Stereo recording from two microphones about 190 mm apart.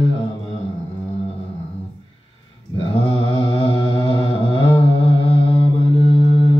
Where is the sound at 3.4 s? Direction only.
25° left (ahead or behind).